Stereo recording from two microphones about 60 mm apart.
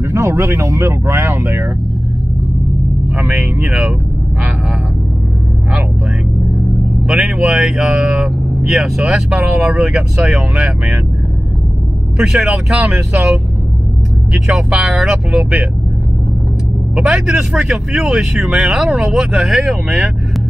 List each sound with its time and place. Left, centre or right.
0.1 s speech: right
7.1 s speech: centre
12.3 s speech: centre
12.9 s speech: right
14.5 s speech: centre
17.1 s speech: centre